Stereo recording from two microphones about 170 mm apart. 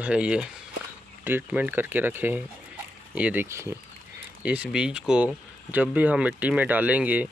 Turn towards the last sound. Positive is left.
turn(degrees=-10)  # may be behind; listen again after turning